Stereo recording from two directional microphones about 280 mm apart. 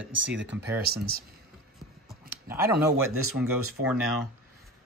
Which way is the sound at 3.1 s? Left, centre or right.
Right.